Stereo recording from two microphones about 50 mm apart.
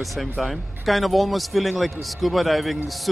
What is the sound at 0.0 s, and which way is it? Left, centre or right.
Speech, centre.